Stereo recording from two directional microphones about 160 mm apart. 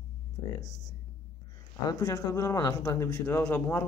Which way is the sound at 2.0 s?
20° left (ahead or behind).